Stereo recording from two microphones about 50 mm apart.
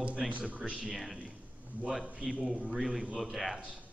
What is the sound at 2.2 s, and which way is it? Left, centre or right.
Speech, centre.